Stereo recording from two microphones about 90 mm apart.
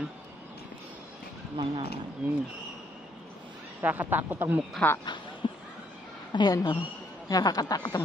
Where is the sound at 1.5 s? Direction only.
80° right.